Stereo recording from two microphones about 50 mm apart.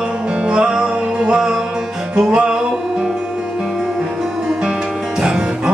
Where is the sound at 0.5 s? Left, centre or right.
Centre.